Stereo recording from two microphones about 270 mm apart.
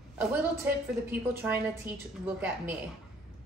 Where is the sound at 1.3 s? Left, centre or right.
Centre.